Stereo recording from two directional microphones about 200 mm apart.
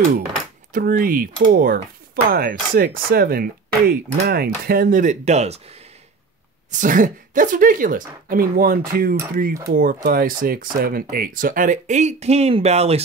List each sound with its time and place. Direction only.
0.7 s speech: 45° right (ahead or behind)